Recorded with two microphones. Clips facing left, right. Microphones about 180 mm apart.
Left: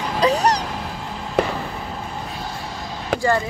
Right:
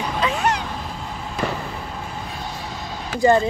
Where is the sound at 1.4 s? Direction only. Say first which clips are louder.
Left 5 dB; 65° left (ahead or behind).